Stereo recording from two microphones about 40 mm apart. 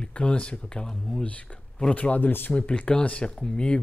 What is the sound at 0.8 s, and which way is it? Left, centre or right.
Speech, centre.